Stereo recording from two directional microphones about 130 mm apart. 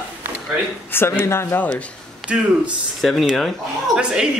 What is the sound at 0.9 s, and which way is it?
Speech, 20° left (ahead or behind).